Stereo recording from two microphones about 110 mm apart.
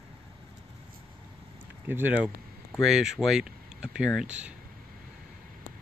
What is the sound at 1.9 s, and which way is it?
Speech, 15° right (ahead or behind).